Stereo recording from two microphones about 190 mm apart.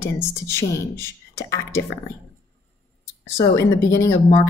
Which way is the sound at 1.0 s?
15° left (ahead or behind).